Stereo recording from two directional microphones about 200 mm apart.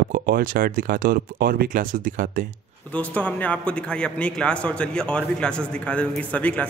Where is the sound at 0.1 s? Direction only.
45° right (ahead or behind).